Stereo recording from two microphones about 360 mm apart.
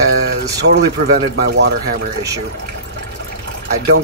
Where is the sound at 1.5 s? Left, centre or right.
Right.